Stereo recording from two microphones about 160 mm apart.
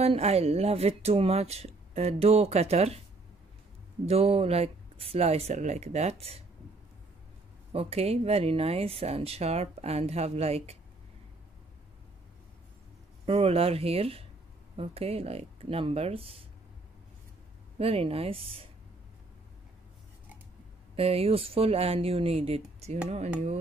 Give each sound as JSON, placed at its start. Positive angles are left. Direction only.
{"t": 0.0, "sound": "speech", "side_deg": -40}
{"t": 4.0, "sound": "speech", "side_deg": -40}
{"t": 7.7, "sound": "speech", "side_deg": -40}
{"t": 13.2, "sound": "speech", "side_deg": -40}
{"t": 17.7, "sound": "speech", "side_deg": -40}
{"t": 20.9, "sound": "speech", "side_deg": -35}